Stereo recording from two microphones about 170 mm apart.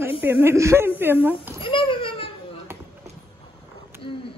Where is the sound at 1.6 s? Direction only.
30° left (ahead or behind).